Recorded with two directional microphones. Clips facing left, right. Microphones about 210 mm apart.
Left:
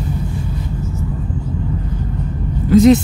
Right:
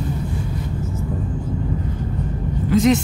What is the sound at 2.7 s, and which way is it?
Speech, 35° left (ahead or behind).